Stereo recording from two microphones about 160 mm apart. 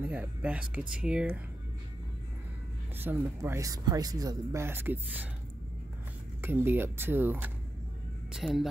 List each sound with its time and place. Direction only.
0.0 s speech: 10° right (ahead or behind)
3.0 s speech: 15° right (ahead or behind)
6.4 s speech: 15° right (ahead or behind)